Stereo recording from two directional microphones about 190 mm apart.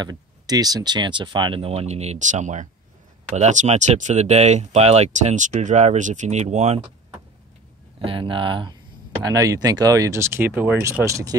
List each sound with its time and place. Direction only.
0.0 s speech: 20° right (ahead or behind); by 6.8 s 35° right (ahead or behind)
8.0 s speech: 25° right (ahead or behind)